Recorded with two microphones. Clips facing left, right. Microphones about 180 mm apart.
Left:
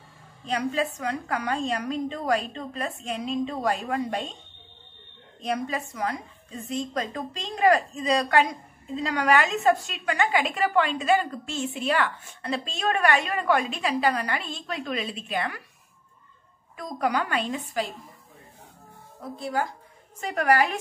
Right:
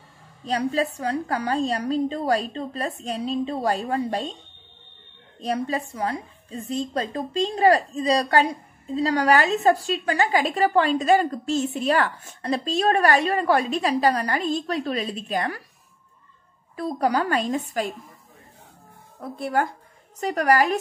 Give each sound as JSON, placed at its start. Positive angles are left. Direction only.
{"t": 0.5, "sound": "a woman's voice", "side_deg": -35}
{"t": 5.4, "sound": "a woman's voice", "side_deg": -35}
{"t": 16.7, "sound": "a woman's voice", "side_deg": -35}
{"t": 19.4, "sound": "speech", "side_deg": -55}
{"t": 20.2, "sound": "a woman's voice", "side_deg": -40}